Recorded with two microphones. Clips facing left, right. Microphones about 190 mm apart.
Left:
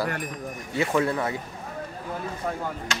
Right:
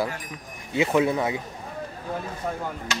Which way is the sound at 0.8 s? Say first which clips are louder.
Right 3 dB; 15° right (ahead or behind).